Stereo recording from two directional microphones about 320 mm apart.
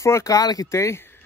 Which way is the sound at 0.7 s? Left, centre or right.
Centre.